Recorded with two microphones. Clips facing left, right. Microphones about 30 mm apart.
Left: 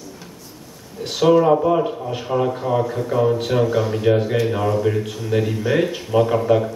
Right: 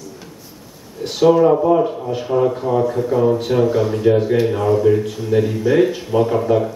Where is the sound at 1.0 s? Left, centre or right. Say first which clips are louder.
Right 2 dB; centre.